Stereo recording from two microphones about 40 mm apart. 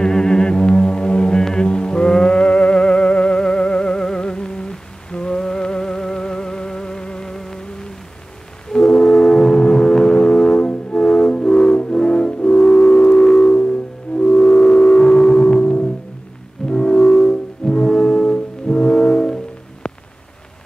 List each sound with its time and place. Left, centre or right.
0.0 s mantra: centre
7.3 s music: centre
8.6 s foghorn: centre
9.6 s music: centre
12.5 s music: centre
15.5 s music: left; by 17.3 s centre
17.3 s brass instrument: left